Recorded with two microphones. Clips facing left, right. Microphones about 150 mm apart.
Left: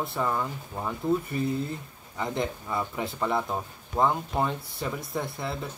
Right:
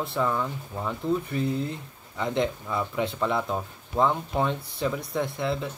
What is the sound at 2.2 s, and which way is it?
Speech, 5° left (ahead or behind).